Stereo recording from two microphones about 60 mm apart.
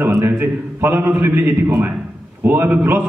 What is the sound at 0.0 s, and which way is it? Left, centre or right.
A man's voice, right.